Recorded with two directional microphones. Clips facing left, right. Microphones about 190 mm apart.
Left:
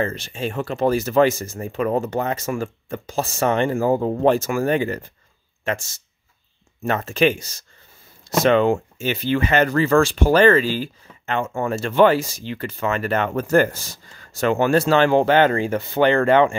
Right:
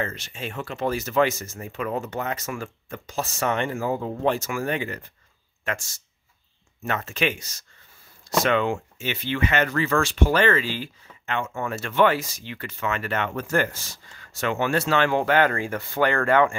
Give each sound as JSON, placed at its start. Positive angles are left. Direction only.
{"t": 0.0, "sound": "speech", "side_deg": 30}
{"t": 6.8, "sound": "speech", "side_deg": 35}